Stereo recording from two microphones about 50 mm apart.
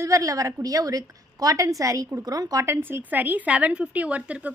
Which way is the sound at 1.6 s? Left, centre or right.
Right.